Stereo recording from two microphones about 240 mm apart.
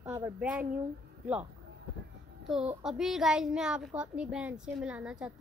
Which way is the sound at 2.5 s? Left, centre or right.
Centre.